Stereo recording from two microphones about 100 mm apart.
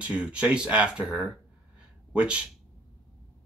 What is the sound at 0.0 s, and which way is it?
Speech, 10° right (ahead or behind).